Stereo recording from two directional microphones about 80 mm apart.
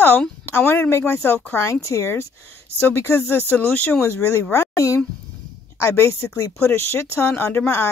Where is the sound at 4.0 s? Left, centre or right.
Left.